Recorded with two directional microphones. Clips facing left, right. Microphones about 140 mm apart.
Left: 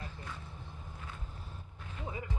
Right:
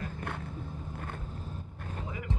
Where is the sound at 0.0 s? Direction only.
55° right (ahead or behind).